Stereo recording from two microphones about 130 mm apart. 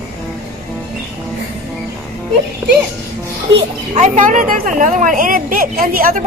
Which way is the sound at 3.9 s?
70° right (ahead or behind).